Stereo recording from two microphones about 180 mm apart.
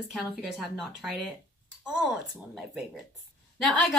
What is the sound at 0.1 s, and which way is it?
A woman's voice, centre (ahead or behind).